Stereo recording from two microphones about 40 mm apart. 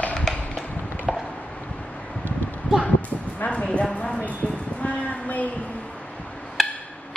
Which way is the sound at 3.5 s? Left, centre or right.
Left.